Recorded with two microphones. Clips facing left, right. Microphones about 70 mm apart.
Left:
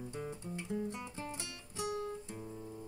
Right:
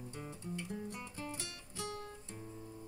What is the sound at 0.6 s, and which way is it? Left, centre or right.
Music, left.